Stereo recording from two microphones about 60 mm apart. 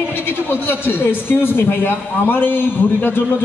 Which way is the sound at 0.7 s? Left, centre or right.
Left.